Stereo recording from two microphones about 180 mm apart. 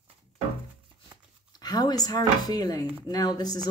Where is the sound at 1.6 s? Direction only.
20° left (ahead or behind).